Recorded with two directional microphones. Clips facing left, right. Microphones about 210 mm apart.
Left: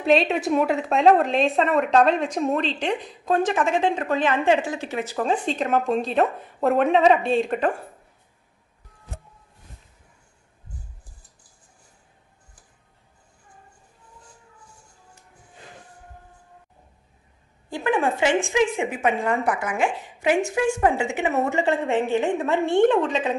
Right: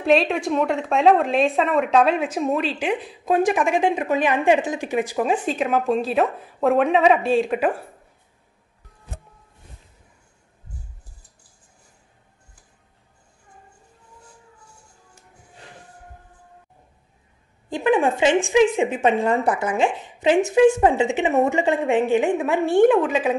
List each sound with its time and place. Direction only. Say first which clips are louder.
0.0 s a woman's voice: right 1 dB; centre (ahead or behind)
17.6 s a woman's voice: right 4 dB; 20° right (ahead or behind)